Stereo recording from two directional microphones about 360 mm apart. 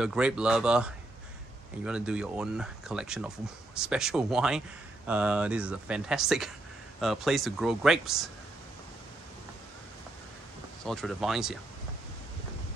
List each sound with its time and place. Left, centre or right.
0.0 s speech: centre
10.8 s speech: centre